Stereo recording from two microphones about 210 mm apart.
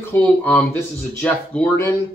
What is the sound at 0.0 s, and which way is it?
A man's voice, 10° left (ahead or behind).